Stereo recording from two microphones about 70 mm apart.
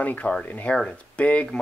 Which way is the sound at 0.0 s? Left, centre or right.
Left.